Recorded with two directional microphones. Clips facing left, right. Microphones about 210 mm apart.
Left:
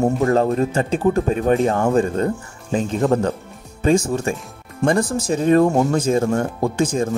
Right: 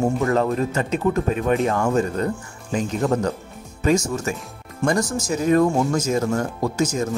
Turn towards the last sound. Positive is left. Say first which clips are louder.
# left 2 dB
turn(degrees=30)  # may be behind; listen again after turning